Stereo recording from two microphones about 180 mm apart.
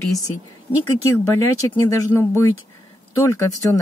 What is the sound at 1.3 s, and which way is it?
Speech, 15° left (ahead or behind).